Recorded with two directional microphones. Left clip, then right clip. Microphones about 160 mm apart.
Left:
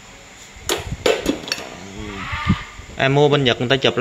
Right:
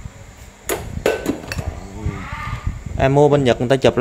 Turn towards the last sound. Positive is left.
turn(degrees=-30)  # may be behind; listen again after turning